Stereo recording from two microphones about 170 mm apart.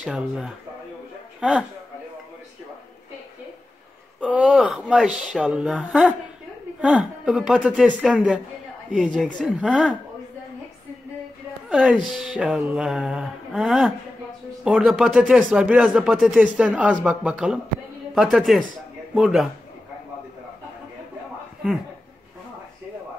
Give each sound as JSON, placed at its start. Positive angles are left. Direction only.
{"t": 0.0, "sound": "speech", "side_deg": 0}
{"t": 4.3, "sound": "speech", "side_deg": 0}
{"t": 11.7, "sound": "speech", "side_deg": -5}